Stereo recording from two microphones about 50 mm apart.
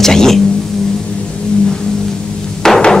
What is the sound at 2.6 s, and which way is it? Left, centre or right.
Hammer, centre.